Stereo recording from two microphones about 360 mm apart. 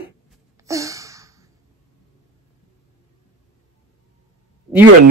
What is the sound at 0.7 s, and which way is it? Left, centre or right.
Sigh, centre.